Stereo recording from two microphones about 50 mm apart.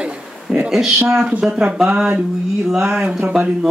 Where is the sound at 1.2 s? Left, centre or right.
Right.